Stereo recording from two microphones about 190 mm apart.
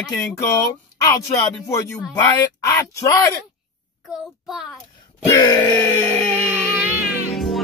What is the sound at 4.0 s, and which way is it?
Speech, centre (ahead or behind).